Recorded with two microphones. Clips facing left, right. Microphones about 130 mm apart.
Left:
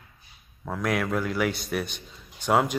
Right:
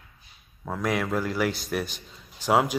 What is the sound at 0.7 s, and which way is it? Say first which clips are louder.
A man's voice: even; centre (ahead or behind).